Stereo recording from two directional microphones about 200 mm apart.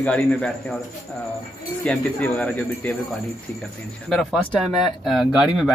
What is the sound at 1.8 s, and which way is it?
Speech, 5° left (ahead or behind).